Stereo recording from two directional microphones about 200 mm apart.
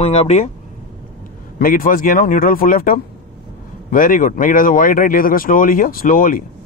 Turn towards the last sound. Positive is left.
turn(degrees=45)  # may be behind; listen again after turning